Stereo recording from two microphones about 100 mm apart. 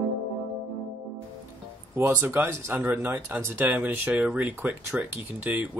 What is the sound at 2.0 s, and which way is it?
Speech, 25° right (ahead or behind).